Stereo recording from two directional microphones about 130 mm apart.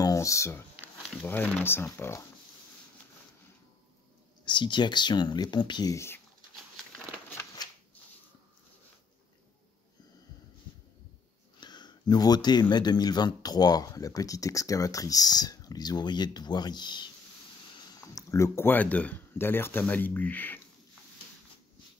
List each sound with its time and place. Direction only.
0.0 s speech: 25° left (ahead or behind)
4.5 s speech: 35° left (ahead or behind)
5.9 s speech: 20° left (ahead or behind)
11.6 s speech: 35° left (ahead or behind)
18.3 s speech: 20° left (ahead or behind)